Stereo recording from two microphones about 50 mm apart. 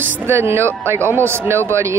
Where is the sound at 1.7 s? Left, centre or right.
Right.